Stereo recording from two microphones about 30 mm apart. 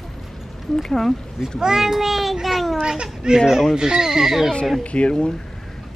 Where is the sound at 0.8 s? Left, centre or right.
Centre.